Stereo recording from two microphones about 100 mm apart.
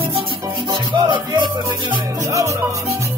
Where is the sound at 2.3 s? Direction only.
30° right (ahead or behind).